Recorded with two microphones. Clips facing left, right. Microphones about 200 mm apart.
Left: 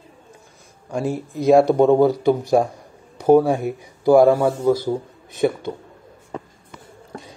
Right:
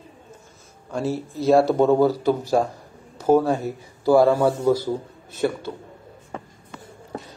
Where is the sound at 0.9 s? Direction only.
15° left (ahead or behind).